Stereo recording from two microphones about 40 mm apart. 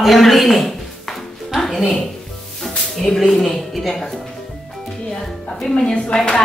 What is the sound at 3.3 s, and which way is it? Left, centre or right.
Speech, centre.